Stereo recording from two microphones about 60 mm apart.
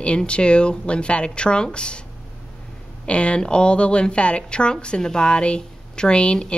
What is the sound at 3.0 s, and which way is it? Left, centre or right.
Speech, centre.